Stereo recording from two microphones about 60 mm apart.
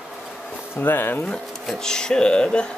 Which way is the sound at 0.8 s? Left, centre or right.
Left.